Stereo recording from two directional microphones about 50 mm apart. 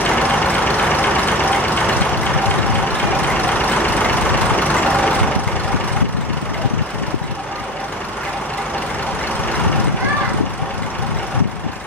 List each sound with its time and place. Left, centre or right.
0.1 s vehicle: left
3.3 s vehicle: left